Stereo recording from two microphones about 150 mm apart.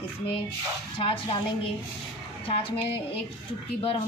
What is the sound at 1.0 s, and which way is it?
Speech, 35° left (ahead or behind).